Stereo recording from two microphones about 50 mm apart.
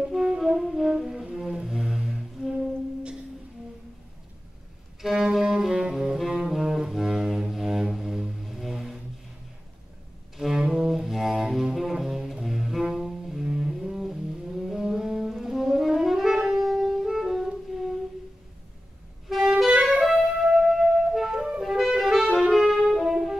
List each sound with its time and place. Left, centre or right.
0.0 s brass instrument: centre
0.6 s brass instrument: centre
0.8 s music: centre
5.0 s saxophone: centre
5.9 s music: centre
10.3 s music: centre
19.2 s music: centre